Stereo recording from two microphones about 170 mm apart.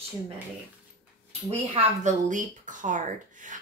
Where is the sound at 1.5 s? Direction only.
40° right (ahead or behind).